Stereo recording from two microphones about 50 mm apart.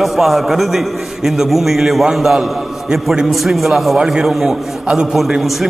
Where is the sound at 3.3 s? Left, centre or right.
Centre.